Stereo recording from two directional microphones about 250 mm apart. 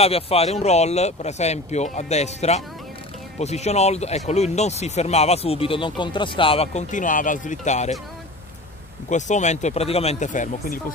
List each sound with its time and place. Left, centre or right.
0.0 s speech: left
9.1 s speech: left